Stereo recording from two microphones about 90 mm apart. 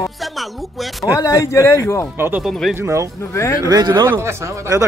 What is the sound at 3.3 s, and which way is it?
Speech, 35° left (ahead or behind).